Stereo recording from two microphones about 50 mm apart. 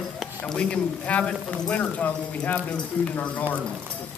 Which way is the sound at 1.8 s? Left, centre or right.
Left.